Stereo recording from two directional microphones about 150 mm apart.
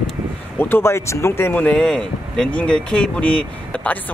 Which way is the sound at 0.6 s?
15° left (ahead or behind).